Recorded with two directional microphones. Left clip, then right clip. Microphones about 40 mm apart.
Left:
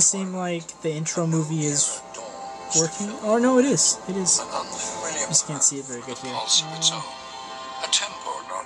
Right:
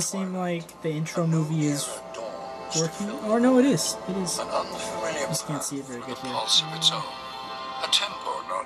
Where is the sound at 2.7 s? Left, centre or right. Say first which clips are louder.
Left 4 dB; centre.